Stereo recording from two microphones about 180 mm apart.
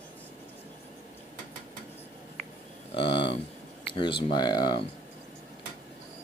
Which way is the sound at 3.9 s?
25° left (ahead or behind).